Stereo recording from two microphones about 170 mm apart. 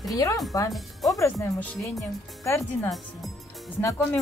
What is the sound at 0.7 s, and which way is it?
Speech, centre (ahead or behind).